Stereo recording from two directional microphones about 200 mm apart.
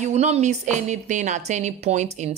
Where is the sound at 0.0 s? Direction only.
35° right (ahead or behind).